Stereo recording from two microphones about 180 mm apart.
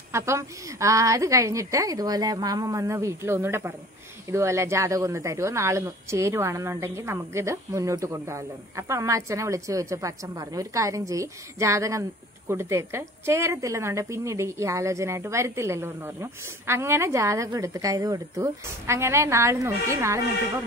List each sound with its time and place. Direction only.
0.1 s speech: 15° right (ahead or behind)